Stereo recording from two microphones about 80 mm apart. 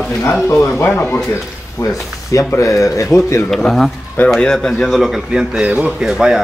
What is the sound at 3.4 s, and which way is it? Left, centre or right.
Speech, centre.